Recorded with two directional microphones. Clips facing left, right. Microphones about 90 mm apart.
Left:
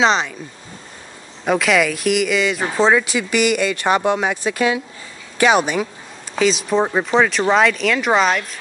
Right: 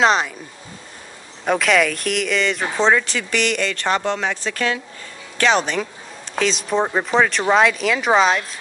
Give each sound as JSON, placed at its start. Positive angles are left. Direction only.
{"t": 0.0, "sound": "speech", "side_deg": -5}
{"t": 1.4, "sound": "speech", "side_deg": 0}